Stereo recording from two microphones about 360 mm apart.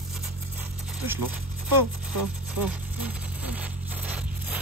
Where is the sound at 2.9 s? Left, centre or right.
Centre.